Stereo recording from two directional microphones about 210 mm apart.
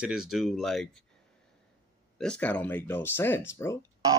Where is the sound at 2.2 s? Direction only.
5° left (ahead or behind).